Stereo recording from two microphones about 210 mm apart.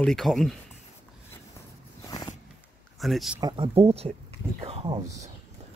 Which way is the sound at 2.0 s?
20° left (ahead or behind).